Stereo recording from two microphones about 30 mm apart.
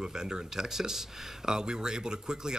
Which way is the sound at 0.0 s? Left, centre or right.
Right.